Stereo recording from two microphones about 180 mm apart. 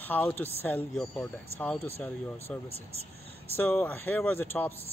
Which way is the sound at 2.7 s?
35° right (ahead or behind).